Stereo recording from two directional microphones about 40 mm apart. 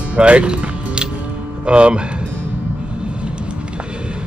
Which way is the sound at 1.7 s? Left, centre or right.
Right.